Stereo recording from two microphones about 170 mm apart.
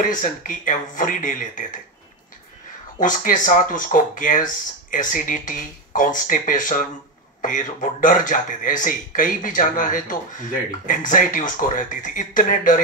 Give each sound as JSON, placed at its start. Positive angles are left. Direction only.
{"t": 0.0, "sound": "speech", "side_deg": 50}
{"t": 3.0, "sound": "speech", "side_deg": 50}